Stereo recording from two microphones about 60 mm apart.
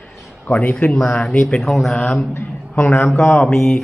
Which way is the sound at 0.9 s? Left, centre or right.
Centre.